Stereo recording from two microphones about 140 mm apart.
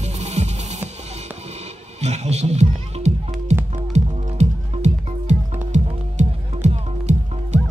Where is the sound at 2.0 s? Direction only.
50° right (ahead or behind).